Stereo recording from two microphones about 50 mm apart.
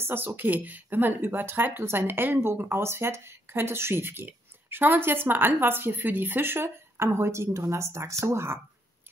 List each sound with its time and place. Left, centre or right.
0.0 s speech: right